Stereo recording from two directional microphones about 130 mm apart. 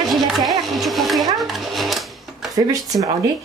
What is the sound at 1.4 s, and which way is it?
Sewing machine, centre (ahead or behind).